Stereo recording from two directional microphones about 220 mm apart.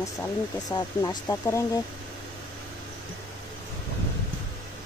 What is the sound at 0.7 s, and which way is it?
Speech, 20° left (ahead or behind).